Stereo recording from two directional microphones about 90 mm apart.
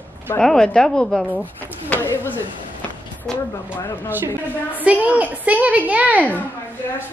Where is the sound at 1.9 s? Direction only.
20° left (ahead or behind).